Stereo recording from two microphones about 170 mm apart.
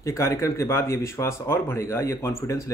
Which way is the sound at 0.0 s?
15° left (ahead or behind).